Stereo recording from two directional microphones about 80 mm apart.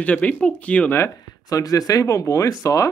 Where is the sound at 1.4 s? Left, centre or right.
Left.